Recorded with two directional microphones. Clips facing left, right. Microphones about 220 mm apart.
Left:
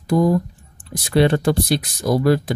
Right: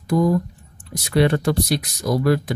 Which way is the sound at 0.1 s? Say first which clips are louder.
Left 2 dB; 35° left (ahead or behind).